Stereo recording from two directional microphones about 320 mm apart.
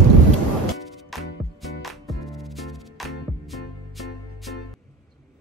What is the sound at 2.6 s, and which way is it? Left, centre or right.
Music, centre.